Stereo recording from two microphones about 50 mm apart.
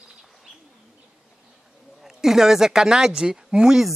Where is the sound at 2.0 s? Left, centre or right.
Centre.